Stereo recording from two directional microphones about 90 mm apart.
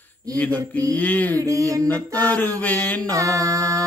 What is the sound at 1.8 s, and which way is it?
Mantra, 20° left (ahead or behind).